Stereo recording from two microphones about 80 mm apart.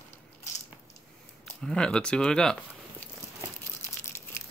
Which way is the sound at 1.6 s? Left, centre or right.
Centre.